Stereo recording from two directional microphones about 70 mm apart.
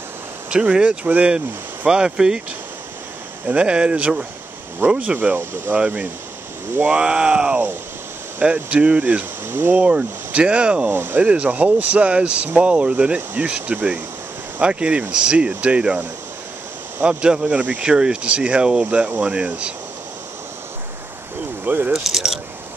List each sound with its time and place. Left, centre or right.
0.5 s speech: centre
3.4 s speech: centre
8.6 s speech: centre
9.5 s speech: right
9.8 s speech: centre
10.9 s speech: right
11.1 s speech: centre
17.0 s speech: centre
21.6 s speech: right
21.9 s speech: centre